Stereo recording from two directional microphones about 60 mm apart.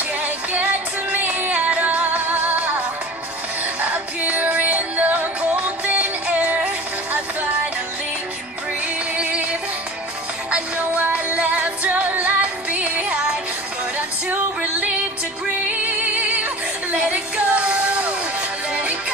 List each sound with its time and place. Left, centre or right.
0.2 s music: right
3.8 s music: right
9.1 s music: right